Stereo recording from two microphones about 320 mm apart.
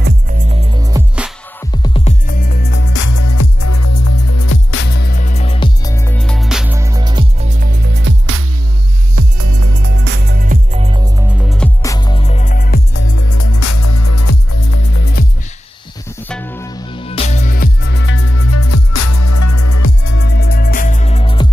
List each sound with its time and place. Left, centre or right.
0.0 s music: right; by 1.3 s centre
1.7 s music: centre; by 3.1 s left
3.1 s music: left; by 8.5 s right
9.1 s music: right
9.8 s music: right; by 11.2 s centre
11.3 s music: centre; by 13.0 s left
13.1 s music: left
16.3 s music: centre; by 19.9 s left
20.1 s music: left; by 21.5 s centre